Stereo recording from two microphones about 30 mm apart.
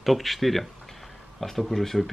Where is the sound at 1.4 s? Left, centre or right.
Centre.